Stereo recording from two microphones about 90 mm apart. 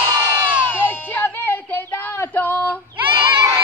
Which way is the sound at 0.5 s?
15° right (ahead or behind).